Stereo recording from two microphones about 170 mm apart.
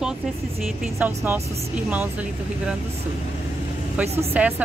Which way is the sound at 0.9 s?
10° right (ahead or behind).